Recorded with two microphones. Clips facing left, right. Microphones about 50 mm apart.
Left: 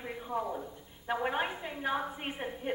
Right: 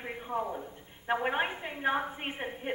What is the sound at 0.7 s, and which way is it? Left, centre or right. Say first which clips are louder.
A woman's voice: right 3 dB; right.